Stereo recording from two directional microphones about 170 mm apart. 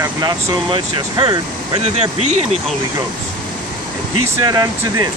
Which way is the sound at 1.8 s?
40° right (ahead or behind).